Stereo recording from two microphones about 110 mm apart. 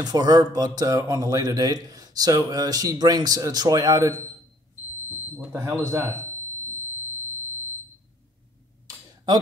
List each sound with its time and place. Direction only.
0.0 s speech: 35° right (ahead or behind)
5.8 s speech: 25° right (ahead or behind)
8.8 s a sound: 40° right (ahead or behind)